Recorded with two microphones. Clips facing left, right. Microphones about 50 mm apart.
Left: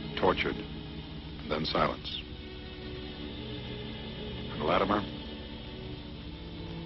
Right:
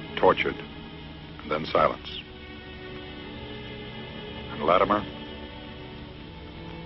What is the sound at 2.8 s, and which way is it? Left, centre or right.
Music, right.